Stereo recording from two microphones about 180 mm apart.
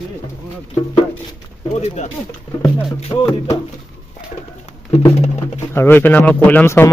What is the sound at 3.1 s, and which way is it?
Speech, 15° left (ahead or behind).